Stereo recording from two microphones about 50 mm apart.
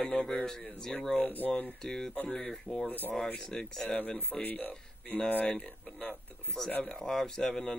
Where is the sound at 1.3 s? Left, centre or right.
Left.